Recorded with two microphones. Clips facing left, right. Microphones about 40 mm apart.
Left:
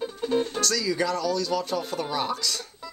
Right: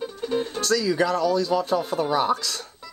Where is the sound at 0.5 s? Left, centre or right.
Right.